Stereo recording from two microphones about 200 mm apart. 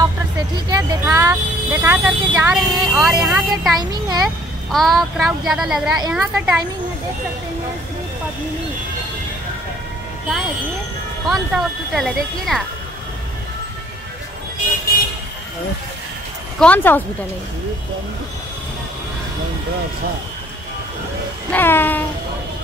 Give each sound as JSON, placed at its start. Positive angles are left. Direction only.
{"t": 0.7, "sound": "vehicle", "side_deg": -20}
{"t": 3.3, "sound": "speech", "side_deg": 0}
{"t": 3.9, "sound": "a child's voice", "side_deg": -20}
{"t": 4.7, "sound": "speech", "side_deg": 0}
{"t": 11.2, "sound": "speech", "side_deg": 0}
{"t": 16.5, "sound": "speech", "side_deg": 5}
{"t": 21.5, "sound": "a sound", "side_deg": 10}